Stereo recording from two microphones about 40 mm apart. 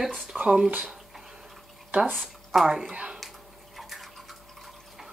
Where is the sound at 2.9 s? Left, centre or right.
Right.